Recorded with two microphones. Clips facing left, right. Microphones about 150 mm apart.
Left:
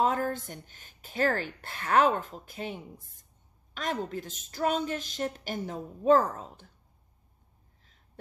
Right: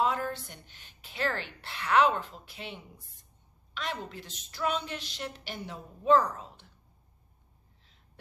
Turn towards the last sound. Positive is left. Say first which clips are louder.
# left 2 dB
turn(degrees=45)  # may be behind; listen again after turning